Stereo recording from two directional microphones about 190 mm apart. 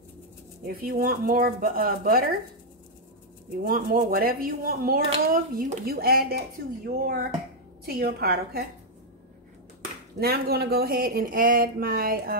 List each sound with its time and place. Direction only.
0.7 s speech: 50° right (ahead or behind)
3.6 s speech: 45° right (ahead or behind)
10.1 s speech: 55° right (ahead or behind)